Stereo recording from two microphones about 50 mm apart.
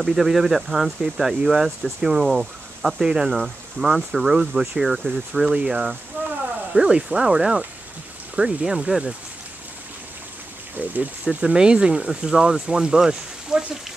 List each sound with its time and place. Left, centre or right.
0.0 s speech: centre
4.8 s speech: centre
5.5 s speech: centre
10.8 s speech: right
11.2 s speech: centre